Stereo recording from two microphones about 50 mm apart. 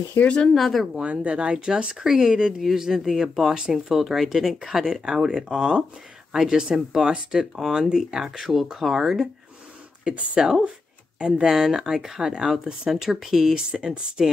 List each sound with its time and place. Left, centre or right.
0.2 s speech: left
0.6 s speech: centre
0.9 s speech: right; by 13.6 s centre
13.7 s speech: centre